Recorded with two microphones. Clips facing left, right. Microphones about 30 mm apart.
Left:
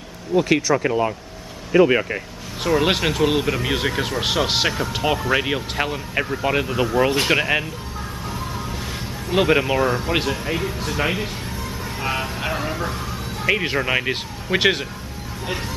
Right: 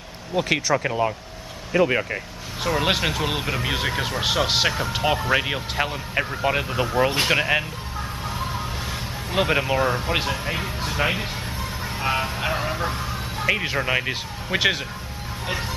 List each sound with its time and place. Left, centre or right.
0.3 s speech: centre
8.3 s music: centre
9.3 s speech: centre
12.7 s bow-wow: centre
13.5 s speech: centre